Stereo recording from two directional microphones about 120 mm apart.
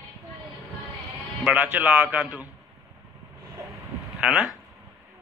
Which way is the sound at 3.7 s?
5° right (ahead or behind).